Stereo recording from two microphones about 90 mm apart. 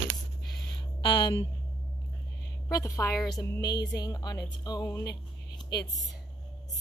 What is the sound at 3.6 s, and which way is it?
Music, 50° left (ahead or behind).